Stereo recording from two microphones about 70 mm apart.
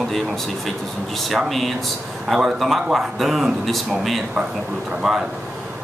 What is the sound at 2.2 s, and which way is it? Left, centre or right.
A man's voice, centre.